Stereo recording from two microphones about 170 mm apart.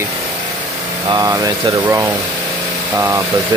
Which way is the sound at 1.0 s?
20° right (ahead or behind).